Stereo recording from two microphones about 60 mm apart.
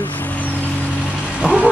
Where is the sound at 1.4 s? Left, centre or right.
Centre.